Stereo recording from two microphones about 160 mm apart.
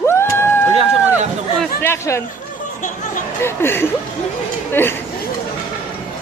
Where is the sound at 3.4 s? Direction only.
15° left (ahead or behind).